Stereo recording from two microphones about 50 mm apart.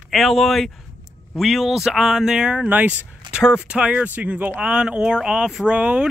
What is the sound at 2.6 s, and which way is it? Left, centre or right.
Speech, right.